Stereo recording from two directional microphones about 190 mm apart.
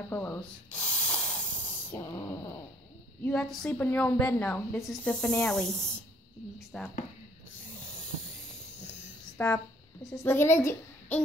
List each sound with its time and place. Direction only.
0.1 s spray: 10° left (ahead or behind)
1.9 s a woman's voice: 15° left (ahead or behind)
3.3 s a woman's voice: 5° left (ahead or behind)
9.4 s a woman's voice: 10° left (ahead or behind)